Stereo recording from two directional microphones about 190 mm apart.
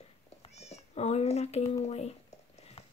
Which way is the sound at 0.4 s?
35° left (ahead or behind).